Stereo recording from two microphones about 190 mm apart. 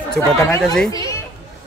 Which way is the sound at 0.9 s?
20° left (ahead or behind).